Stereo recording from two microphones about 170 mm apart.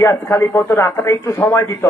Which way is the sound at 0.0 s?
15° left (ahead or behind).